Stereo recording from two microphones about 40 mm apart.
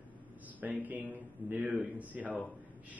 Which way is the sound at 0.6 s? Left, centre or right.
Right.